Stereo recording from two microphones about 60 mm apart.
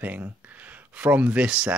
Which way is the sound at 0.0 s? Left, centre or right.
Right.